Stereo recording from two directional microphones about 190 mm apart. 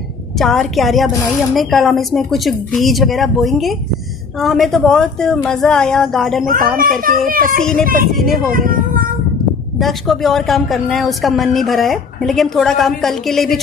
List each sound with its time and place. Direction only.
0.4 s a woman's voice: centre (ahead or behind)
6.4 s a child's voice: 45° right (ahead or behind)
8.1 s a woman's voice: centre (ahead or behind)
8.5 s a child's voice: 50° right (ahead or behind)
9.8 s a woman's voice: centre (ahead or behind)